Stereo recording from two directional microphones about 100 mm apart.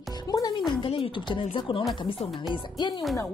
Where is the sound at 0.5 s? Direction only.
55° left (ahead or behind).